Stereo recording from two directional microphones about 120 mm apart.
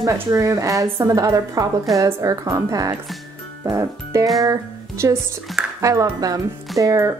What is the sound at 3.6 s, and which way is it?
Music, 25° right (ahead or behind).